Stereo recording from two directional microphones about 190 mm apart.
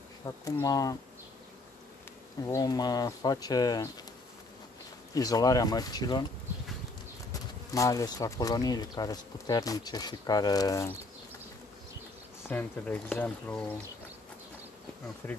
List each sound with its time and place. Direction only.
0.2 s speech: 20° left (ahead or behind)
2.4 s speech: 20° left (ahead or behind)
5.1 s speech: 20° left (ahead or behind)
7.7 s speech: 15° left (ahead or behind)
12.4 s speech: 10° left (ahead or behind)
15.2 s speech: 10° left (ahead or behind)